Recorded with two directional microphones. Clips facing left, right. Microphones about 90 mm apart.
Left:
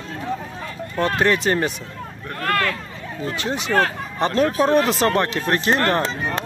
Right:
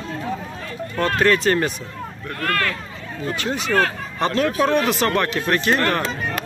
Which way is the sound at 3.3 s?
25° left (ahead or behind).